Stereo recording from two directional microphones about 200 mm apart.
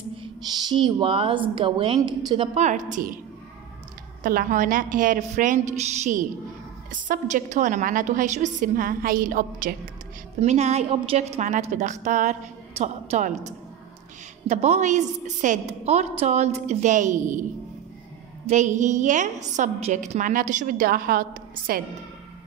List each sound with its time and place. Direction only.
0.2 s a woman's voice: 25° right (ahead or behind); by 3.2 s 40° right (ahead or behind)
4.2 s a woman's voice: 45° right (ahead or behind)
10.4 s a woman's voice: 35° right (ahead or behind)
18.5 s a woman's voice: 35° right (ahead or behind)